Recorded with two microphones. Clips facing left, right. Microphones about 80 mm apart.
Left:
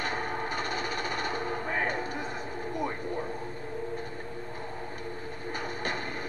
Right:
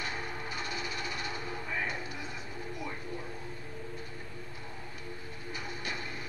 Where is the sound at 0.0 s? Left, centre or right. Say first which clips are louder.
Left 6 dB; left.